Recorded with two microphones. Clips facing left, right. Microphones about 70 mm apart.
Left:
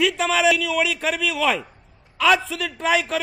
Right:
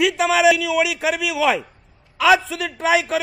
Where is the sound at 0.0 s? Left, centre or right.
Centre.